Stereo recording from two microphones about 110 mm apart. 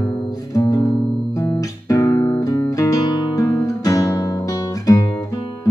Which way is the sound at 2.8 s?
35° left (ahead or behind).